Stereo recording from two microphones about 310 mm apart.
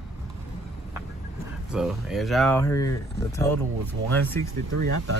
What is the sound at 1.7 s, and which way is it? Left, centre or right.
Speech, centre.